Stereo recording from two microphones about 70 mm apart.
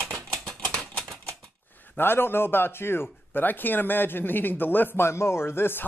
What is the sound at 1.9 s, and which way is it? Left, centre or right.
Speech, left.